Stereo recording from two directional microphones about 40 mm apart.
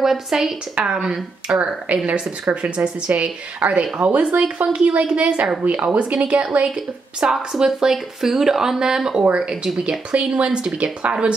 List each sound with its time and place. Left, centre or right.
0.0 s speech: centre
0.7 s speech: right
1.0 s speech: centre
1.9 s a woman's voice: right
3.1 s a woman's voice: right
7.5 s speech: centre
9.8 s speech: right